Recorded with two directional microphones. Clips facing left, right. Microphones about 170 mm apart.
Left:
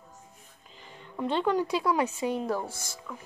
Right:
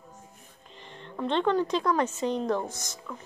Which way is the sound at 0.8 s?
5° left (ahead or behind).